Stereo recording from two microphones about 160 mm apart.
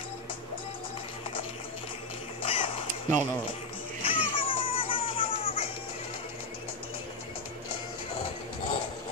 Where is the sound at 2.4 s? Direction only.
35° left (ahead or behind).